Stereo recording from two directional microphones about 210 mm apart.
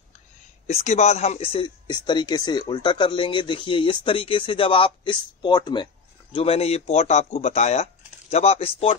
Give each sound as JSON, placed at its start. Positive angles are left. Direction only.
{"t": 0.7, "sound": "speech", "side_deg": 30}